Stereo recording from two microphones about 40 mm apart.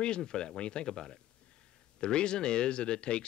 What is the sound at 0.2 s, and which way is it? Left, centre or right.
Speech, centre.